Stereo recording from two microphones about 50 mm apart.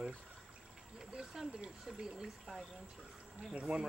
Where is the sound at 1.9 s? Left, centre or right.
Centre.